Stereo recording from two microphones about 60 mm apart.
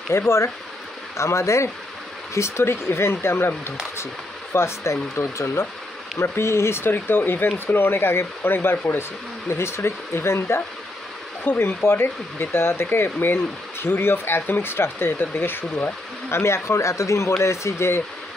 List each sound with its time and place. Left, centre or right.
0.1 s speech: left
9.5 s speech: left
11.4 s speech: left